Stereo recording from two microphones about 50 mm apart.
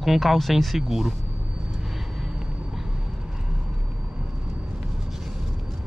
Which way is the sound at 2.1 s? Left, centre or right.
Centre.